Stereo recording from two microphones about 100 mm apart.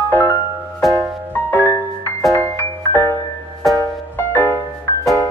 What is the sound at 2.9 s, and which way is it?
Music, 20° left (ahead or behind).